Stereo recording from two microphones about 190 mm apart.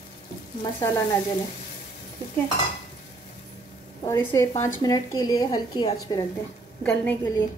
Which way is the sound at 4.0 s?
15° left (ahead or behind).